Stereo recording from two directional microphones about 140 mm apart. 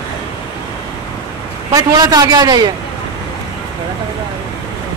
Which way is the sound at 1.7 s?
25° right (ahead or behind).